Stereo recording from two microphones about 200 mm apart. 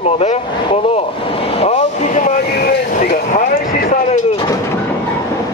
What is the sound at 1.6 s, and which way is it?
Vehicle, 30° left (ahead or behind).